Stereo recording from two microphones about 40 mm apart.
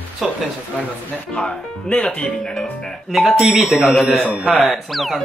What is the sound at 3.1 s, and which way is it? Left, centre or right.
Speech, centre.